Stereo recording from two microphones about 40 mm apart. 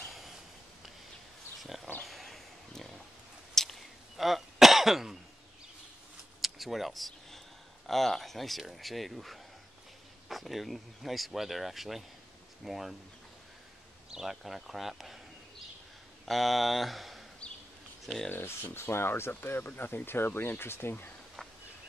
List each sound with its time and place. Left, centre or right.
0.0 s a sound: centre
1.6 s dog: centre
2.0 s a sound: centre
3.5 s cough: centre
6.4 s a sound: centre
7.8 s speech: centre
14.1 s speech: centre
16.3 s speech: centre
18.3 s speech: left
20.1 s speech: left